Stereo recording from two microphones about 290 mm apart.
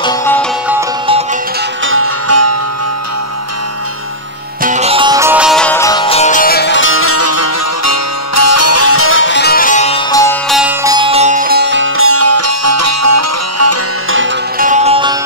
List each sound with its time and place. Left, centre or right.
0.0 s music: centre
1.9 s music: right
4.6 s music: right; by 10.3 s centre
10.5 s music: centre; by 14.2 s right
14.2 s music: right